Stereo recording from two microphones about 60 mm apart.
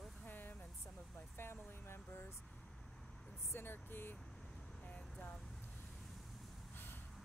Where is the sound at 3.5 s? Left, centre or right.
Left.